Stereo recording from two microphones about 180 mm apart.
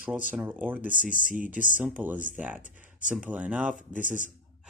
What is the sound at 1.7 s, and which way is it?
Speech, 10° right (ahead or behind).